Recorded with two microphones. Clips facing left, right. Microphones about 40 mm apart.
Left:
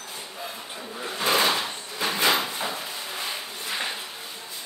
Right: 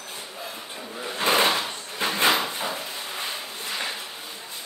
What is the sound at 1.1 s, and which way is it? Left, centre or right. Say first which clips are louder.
Drawer open or close: right 2 dB; right.